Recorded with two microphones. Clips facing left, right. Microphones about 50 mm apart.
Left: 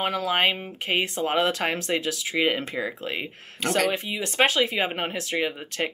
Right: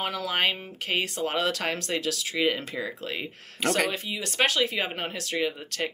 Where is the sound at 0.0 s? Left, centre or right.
Centre.